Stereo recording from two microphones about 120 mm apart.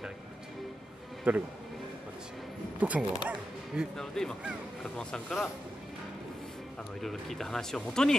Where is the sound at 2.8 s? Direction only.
10° right (ahead or behind).